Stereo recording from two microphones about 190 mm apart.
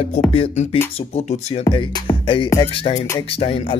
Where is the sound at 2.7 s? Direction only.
25° left (ahead or behind).